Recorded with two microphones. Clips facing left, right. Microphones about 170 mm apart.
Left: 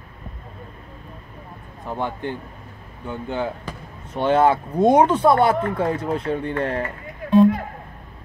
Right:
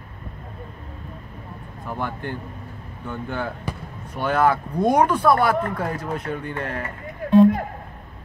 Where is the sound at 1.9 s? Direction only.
20° left (ahead or behind).